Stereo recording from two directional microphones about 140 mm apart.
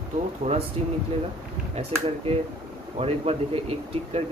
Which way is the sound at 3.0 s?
45° right (ahead or behind).